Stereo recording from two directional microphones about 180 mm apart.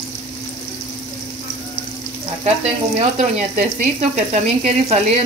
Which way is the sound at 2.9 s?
35° right (ahead or behind).